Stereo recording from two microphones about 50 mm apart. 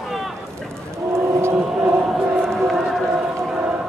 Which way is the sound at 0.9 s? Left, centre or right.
Right.